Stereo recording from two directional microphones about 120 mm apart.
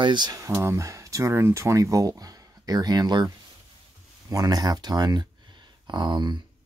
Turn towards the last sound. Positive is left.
turn(degrees=-40)  # may be behind; listen again after turning